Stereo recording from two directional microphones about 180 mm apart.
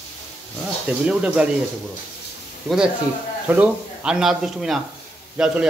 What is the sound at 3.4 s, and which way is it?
Speech, 10° right (ahead or behind).